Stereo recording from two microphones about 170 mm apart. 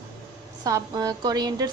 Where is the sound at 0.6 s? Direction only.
20° right (ahead or behind).